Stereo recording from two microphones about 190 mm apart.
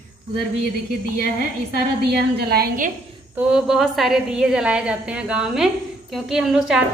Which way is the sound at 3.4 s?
5° right (ahead or behind).